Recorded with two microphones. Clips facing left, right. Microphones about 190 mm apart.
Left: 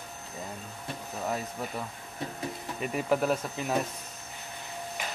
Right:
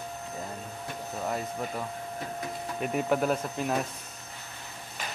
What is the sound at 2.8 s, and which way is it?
Speech, centre (ahead or behind).